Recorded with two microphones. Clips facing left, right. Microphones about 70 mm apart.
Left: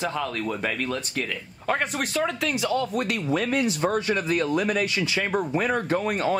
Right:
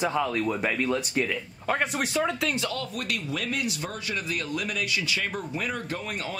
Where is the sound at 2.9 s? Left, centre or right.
Left.